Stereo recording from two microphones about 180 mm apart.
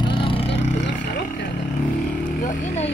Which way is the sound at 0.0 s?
30° left (ahead or behind).